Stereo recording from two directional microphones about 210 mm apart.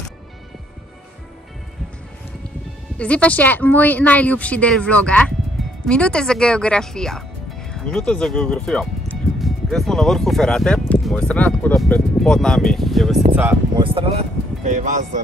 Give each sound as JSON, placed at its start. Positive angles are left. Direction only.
{"t": 3.0, "sound": "speech", "side_deg": 5}
{"t": 13.7, "sound": "speech", "side_deg": -25}